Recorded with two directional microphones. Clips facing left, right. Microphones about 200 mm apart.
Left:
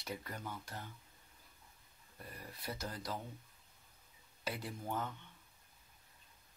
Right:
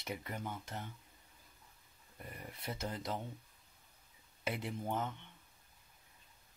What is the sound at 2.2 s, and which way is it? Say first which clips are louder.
Speech: right 2 dB; 20° right (ahead or behind).